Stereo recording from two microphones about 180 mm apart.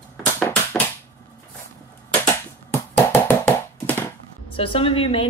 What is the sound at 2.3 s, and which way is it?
Hands, 15° left (ahead or behind).